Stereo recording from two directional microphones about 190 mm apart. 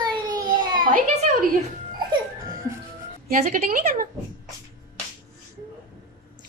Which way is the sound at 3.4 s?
45° right (ahead or behind).